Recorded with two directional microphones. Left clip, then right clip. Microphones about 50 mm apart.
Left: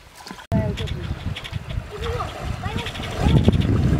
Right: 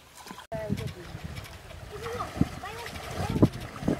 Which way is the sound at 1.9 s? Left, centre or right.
Centre.